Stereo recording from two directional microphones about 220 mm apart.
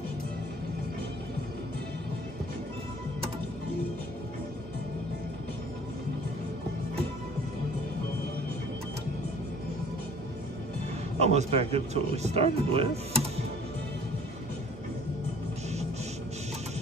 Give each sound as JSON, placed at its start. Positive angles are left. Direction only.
{"t": 11.1, "sound": "speech", "side_deg": -30}